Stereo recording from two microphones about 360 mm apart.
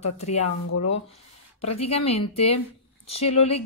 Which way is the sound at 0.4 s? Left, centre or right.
Left.